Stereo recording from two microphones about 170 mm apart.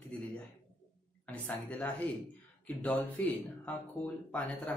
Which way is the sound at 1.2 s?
10° left (ahead or behind).